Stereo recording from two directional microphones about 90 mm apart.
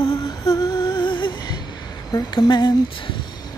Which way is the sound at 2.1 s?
50° left (ahead or behind).